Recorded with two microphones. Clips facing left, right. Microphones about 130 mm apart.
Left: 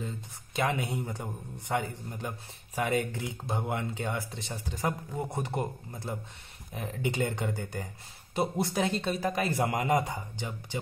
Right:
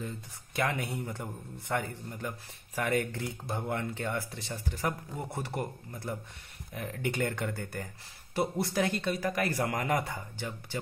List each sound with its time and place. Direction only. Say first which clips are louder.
0.0 s a man's voice: left 1 dB; 20° left (ahead or behind)